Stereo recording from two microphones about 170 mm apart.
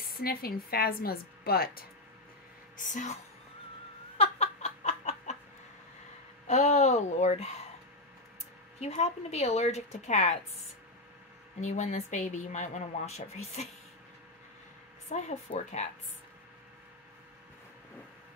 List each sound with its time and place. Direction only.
0.0 s a woman's voice: 60° left (ahead or behind)
2.8 s speech: 50° left (ahead or behind)
4.2 s a sound: 40° left (ahead or behind)
6.4 s speech: 40° left (ahead or behind)
8.7 s speech: 40° left (ahead or behind)
11.6 s speech: 45° left (ahead or behind)
15.0 s speech: 45° left (ahead or behind)